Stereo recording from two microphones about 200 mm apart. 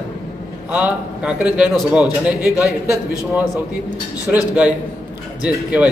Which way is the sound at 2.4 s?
15° left (ahead or behind).